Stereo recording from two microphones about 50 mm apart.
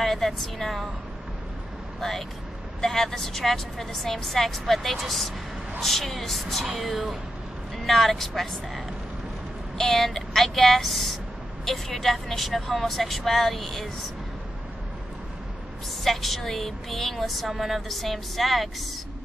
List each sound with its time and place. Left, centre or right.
0.0 s a woman's voice: centre
2.0 s a woman's voice: centre
16.0 s a woman's voice: centre